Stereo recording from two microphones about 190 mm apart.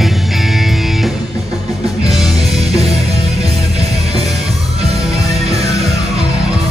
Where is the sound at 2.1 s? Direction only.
Centre (ahead or behind).